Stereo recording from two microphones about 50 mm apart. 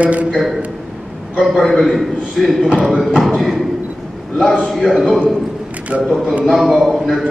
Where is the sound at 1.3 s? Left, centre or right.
Centre.